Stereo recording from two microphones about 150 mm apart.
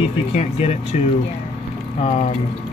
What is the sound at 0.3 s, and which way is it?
Speech, 45° left (ahead or behind).